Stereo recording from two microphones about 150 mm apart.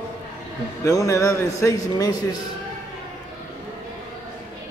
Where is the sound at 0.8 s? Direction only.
20° left (ahead or behind).